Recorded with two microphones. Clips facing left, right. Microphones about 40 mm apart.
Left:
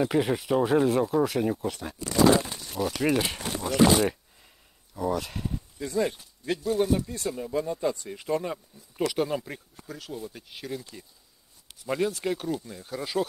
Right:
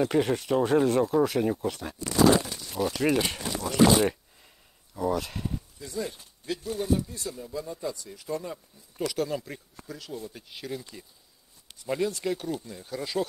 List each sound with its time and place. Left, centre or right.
0.0 s speech: centre
3.6 s speech: left
4.9 s speech: centre
5.8 s speech: left
8.9 s speech: left
9.8 s speech: centre